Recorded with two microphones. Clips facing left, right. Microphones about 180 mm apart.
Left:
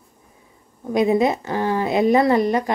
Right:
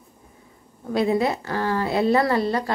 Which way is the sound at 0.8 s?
15° left (ahead or behind).